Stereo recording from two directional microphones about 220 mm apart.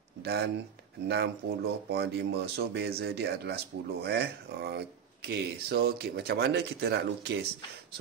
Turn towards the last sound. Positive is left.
turn(degrees=-50)  # may be behind; listen again after turning